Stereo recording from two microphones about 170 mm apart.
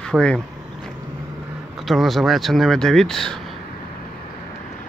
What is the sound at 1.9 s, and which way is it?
Speech, centre (ahead or behind).